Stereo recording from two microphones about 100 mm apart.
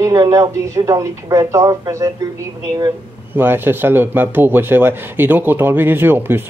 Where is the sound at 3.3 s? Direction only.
20° right (ahead or behind).